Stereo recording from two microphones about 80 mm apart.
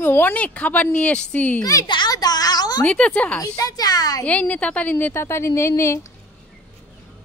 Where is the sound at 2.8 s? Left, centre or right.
Centre.